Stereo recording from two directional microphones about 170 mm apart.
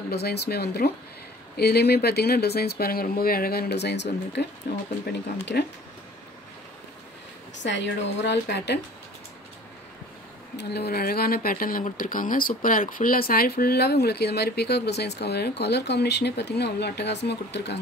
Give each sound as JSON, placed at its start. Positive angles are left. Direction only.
{"t": 0.1, "sound": "speech", "side_deg": 70}
{"t": 4.7, "sound": "speech", "side_deg": 70}
{"t": 7.5, "sound": "a woman's voice", "side_deg": 90}
{"t": 10.6, "sound": "speech", "side_deg": 75}